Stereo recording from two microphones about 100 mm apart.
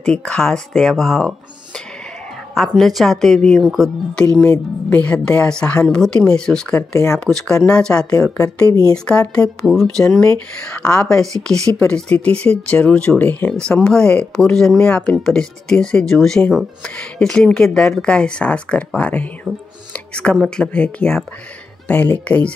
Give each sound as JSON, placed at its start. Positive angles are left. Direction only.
{"t": 0.0, "sound": "speech", "side_deg": 10}
{"t": 2.5, "sound": "speech", "side_deg": 0}
{"t": 4.4, "sound": "speech", "side_deg": 15}
{"t": 6.9, "sound": "a woman's voice", "side_deg": 30}
{"t": 7.6, "sound": "speech", "side_deg": 10}
{"t": 8.1, "sound": "a woman's voice", "side_deg": 35}
{"t": 8.9, "sound": "speech", "side_deg": 10}